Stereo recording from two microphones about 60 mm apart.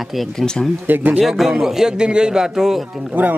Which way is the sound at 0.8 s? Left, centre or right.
Right.